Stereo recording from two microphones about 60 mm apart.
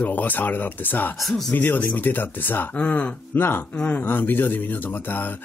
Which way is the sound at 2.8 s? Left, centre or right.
Centre.